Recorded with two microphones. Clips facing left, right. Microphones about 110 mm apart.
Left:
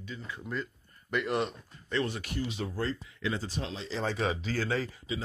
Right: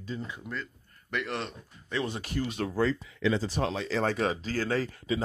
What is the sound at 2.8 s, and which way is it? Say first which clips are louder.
Speech: right 8 dB; 90° right.